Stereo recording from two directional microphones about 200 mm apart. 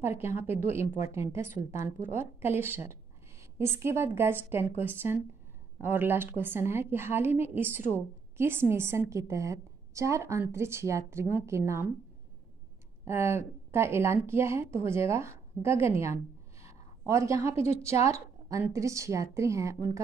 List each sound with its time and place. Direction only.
0.0 s a woman's voice: 10° right (ahead or behind)
13.0 s a woman's voice: 10° right (ahead or behind)
16.6 s a sound: 15° right (ahead or behind)
18.0 s a woman's voice: 15° right (ahead or behind)